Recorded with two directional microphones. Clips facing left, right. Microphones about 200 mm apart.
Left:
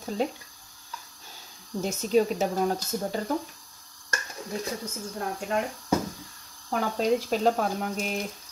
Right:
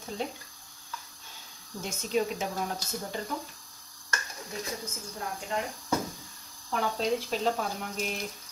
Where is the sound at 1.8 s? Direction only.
40° left (ahead or behind).